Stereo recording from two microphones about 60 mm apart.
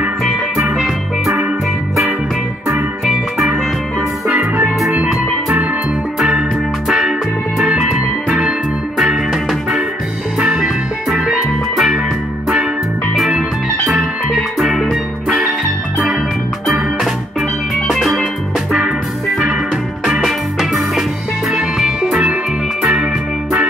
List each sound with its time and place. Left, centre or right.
0.7 s music: centre
4.3 s music: right
6.1 s music: centre
10.4 s music: centre
13.2 s music: centre
16.6 s music: centre
18.8 s music: centre